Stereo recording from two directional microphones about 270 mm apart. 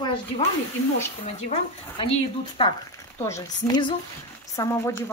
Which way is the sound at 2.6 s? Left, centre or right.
Centre.